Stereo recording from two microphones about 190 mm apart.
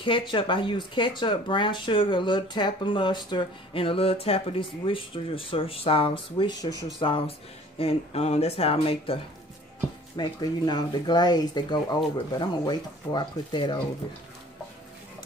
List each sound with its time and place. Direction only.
0.0 s speech: 25° left (ahead or behind)